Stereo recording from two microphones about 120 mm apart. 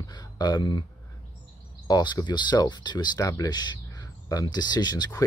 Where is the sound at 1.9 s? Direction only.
35° left (ahead or behind).